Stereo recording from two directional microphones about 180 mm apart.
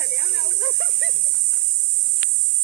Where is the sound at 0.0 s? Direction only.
55° left (ahead or behind).